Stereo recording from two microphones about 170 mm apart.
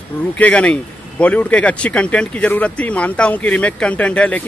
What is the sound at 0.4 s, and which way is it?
Speech, 5° left (ahead or behind).